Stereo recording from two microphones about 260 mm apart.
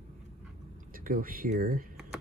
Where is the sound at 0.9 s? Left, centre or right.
Right.